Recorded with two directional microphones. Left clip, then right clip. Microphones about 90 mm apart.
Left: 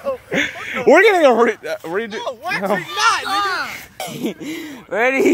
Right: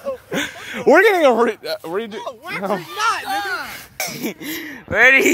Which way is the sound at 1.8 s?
65° right (ahead or behind).